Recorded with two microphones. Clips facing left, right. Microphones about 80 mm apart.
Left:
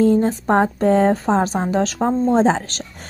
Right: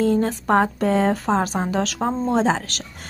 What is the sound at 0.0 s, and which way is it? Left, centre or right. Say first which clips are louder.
A woman's voice: left 4 dB; left.